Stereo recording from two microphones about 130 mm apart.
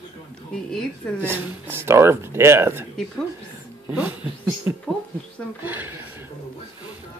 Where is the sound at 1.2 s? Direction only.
20° right (ahead or behind).